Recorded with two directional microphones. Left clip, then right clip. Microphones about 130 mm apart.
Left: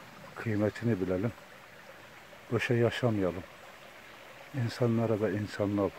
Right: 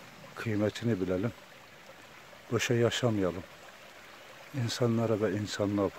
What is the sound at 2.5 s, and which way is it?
Speech, 20° right (ahead or behind).